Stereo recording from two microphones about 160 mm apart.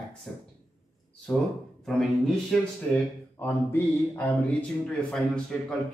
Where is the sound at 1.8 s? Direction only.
Centre (ahead or behind).